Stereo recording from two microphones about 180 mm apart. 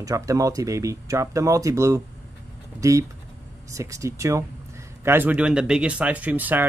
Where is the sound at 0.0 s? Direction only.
20° right (ahead or behind).